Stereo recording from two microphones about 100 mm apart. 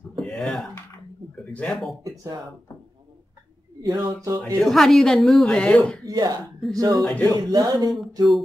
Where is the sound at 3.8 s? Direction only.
40° right (ahead or behind).